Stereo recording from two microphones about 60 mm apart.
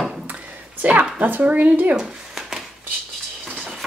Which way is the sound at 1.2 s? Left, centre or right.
Right.